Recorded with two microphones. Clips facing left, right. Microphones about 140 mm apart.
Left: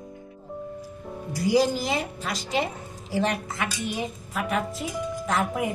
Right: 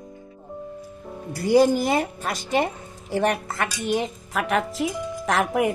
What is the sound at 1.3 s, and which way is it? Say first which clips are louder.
A woman's voice: right 5 dB; 55° right (ahead or behind).